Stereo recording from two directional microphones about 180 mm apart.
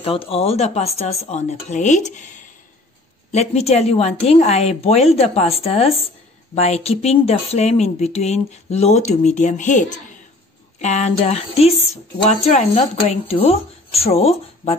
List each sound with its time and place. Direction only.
0.0 s speech: 30° left (ahead or behind)